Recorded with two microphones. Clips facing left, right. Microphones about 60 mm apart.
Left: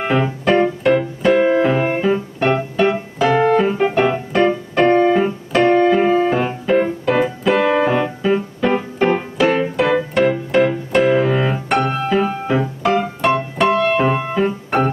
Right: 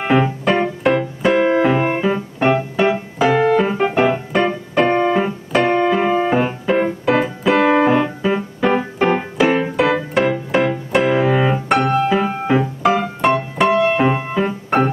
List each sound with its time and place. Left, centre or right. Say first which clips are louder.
0.0 s keyboard: right 1 dB; centre
2.0 s piano: left 1 dB; centre
3.7 s keyboard: left 1 dB; centre
4.0 s piano: left 1 dB; centre
5.1 s keyboard: left 1 dB; centre
9.0 s piano: even; centre
11.7 s music: right 1 dB; centre
12.3 s music: right 2 dB; centre
13.2 s piano: right 2 dB; centre
13.8 s music: even; centre